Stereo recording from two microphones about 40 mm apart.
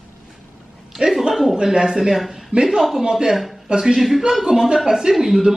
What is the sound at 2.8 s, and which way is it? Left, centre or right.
Speech, centre.